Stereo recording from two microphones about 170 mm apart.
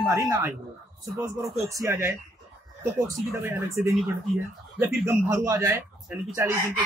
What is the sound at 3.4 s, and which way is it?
Speech, 15° right (ahead or behind).